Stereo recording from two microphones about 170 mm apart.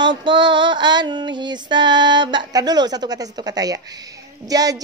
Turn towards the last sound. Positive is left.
turn(degrees=-20)  # may be behind; listen again after turning